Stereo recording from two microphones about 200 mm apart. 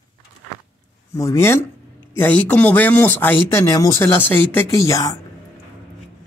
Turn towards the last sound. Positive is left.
turn(degrees=15)  # may be behind; listen again after turning